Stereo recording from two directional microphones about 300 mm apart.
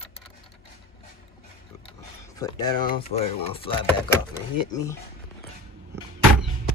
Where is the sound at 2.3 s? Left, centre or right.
Centre.